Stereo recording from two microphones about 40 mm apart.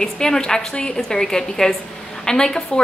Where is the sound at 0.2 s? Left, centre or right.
Centre.